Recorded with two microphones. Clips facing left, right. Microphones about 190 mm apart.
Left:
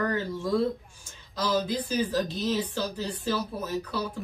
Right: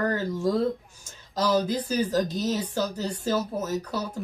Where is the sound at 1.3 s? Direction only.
45° right (ahead or behind).